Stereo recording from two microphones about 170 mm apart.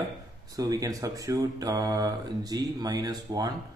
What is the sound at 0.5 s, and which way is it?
Speech, 20° right (ahead or behind).